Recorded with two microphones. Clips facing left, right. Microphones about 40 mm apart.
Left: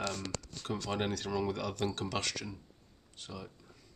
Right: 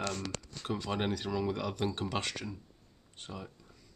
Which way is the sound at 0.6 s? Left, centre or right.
Centre.